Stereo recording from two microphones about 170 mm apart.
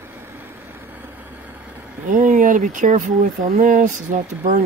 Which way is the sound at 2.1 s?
50° right (ahead or behind).